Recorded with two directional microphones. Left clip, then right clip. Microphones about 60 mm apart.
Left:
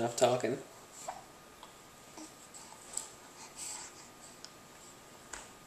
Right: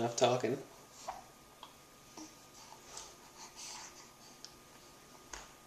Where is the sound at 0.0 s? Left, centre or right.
Centre.